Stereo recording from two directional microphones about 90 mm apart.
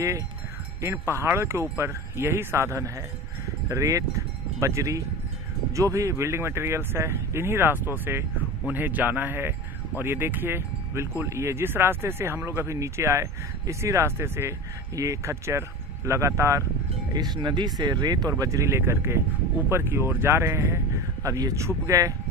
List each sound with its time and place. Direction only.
0.7 s speech: 30° right (ahead or behind)
17.1 s speech: 50° right (ahead or behind)